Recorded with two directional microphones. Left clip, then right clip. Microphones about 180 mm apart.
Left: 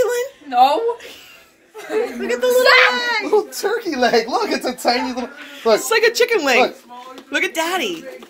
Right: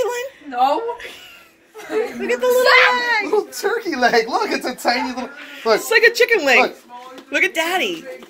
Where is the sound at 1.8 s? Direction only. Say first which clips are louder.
Left 1 dB; 10° left (ahead or behind).